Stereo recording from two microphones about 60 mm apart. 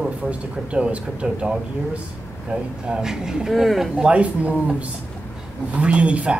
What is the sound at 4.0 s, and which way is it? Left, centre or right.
Speech, right.